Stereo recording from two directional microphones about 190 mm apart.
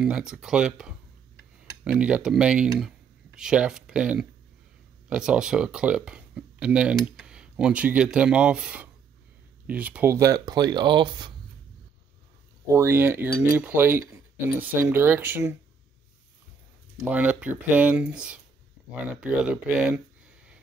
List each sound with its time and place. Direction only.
0.0 s speech: 5° right (ahead or behind); by 11.3 s 25° right (ahead or behind)
12.6 s speech: 15° right (ahead or behind)
17.1 s speech: 5° right (ahead or behind)